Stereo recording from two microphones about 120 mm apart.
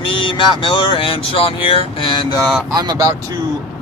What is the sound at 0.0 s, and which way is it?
Speech, 45° left (ahead or behind).